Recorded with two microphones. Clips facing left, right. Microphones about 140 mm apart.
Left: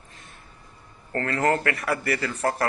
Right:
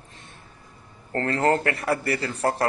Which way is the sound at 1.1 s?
30° right (ahead or behind).